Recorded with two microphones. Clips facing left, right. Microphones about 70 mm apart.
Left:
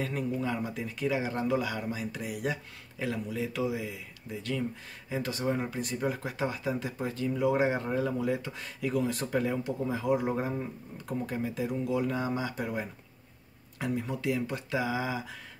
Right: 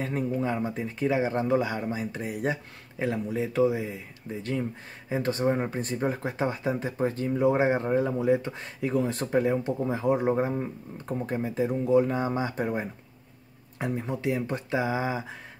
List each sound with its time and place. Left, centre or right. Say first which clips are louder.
0.0 s speech: right 3 dB; right